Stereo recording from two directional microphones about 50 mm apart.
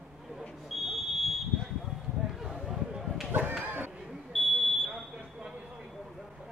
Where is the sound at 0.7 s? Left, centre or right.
Centre.